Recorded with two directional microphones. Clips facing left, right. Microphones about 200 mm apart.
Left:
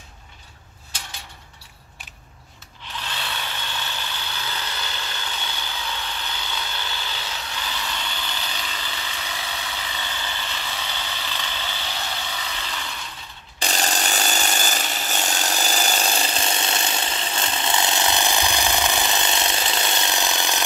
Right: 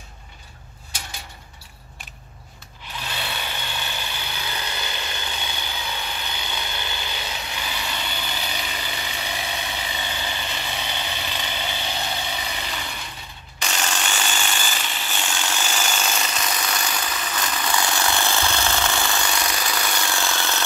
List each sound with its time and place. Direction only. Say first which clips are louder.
3.0 s vehicle: right 1 dB; 10° right (ahead or behind)
13.6 s sawing: left 2 dB; 35° left (ahead or behind); by 20.6 s 15° left (ahead or behind)